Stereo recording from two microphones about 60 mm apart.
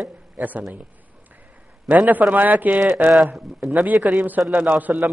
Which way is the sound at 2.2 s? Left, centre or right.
Centre.